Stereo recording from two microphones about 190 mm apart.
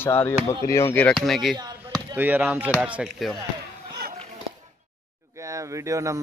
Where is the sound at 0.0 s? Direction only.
15° left (ahead or behind).